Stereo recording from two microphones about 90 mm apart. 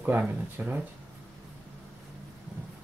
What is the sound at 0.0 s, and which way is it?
Speech, 20° right (ahead or behind).